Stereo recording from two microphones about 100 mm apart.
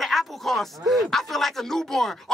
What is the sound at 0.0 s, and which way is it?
A man's voice, centre (ahead or behind).